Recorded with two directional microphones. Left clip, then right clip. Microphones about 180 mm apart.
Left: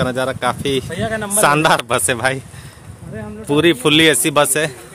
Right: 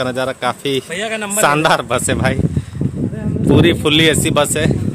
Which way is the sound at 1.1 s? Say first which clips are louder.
Right 1 dB; 40° right (ahead or behind).